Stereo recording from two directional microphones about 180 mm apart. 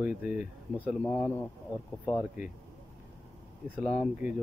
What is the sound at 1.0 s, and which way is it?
Speech, 5° left (ahead or behind).